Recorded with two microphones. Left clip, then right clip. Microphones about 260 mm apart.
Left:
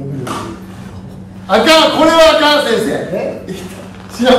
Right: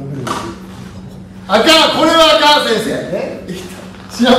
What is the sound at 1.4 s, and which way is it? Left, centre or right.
A man's voice, centre.